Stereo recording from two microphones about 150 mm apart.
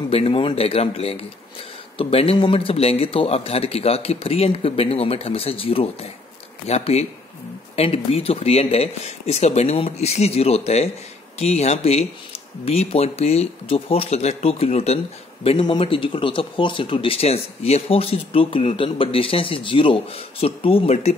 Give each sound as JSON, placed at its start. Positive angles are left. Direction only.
{"t": 0.1, "sound": "speech", "side_deg": 40}